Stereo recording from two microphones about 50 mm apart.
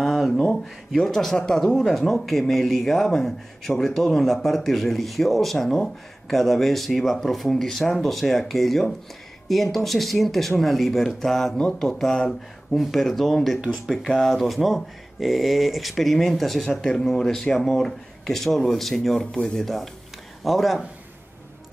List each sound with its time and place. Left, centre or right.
0.0 s a sound: centre
0.9 s speech: centre
19.3 s speech: centre
20.4 s speech: centre